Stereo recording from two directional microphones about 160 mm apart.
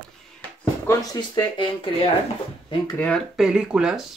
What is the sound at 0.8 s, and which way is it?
Speech, 15° left (ahead or behind).